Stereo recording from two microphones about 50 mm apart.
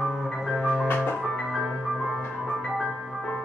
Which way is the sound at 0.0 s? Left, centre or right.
Centre.